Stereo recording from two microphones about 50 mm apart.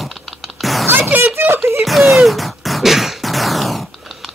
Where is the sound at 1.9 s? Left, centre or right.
Centre.